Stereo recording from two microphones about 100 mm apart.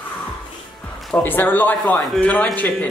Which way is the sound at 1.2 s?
20° left (ahead or behind).